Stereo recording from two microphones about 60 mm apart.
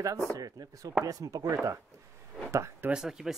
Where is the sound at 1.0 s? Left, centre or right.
Right.